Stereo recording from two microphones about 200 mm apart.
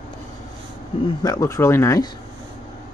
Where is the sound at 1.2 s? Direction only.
15° left (ahead or behind).